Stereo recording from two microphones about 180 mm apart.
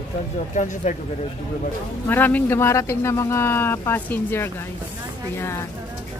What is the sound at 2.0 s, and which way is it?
Speech, 10° left (ahead or behind).